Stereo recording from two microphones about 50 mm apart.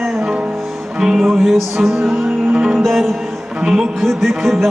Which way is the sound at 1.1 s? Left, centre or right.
Centre.